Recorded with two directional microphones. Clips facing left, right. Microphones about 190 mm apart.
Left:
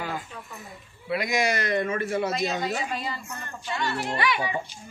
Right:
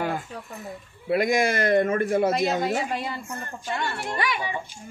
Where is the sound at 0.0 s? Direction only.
50° right (ahead or behind).